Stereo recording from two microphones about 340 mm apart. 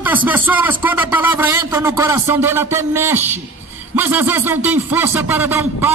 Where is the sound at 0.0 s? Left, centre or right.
Centre.